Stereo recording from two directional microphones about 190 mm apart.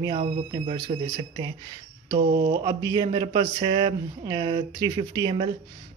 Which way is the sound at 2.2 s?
50° right (ahead or behind).